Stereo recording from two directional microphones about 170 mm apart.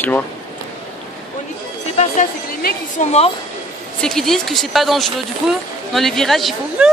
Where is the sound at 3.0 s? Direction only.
40° left (ahead or behind).